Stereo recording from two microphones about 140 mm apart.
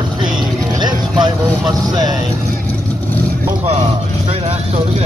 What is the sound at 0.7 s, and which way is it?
Music, 30° right (ahead or behind).